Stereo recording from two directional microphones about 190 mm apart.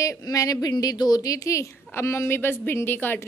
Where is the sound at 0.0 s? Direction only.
15° left (ahead or behind).